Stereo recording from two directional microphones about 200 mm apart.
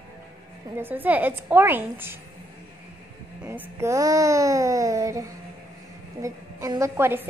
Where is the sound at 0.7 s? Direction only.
10° right (ahead or behind).